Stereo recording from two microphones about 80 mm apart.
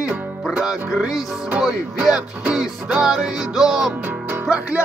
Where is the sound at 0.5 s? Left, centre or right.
Centre.